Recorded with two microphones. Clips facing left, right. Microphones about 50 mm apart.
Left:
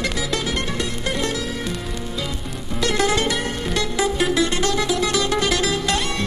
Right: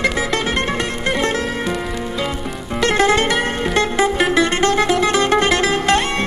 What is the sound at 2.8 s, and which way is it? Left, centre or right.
Music, right.